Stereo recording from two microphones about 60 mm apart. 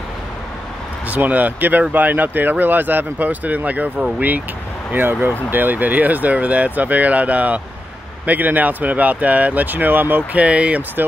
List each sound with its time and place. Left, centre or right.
1.0 s speech: right
4.9 s speech: right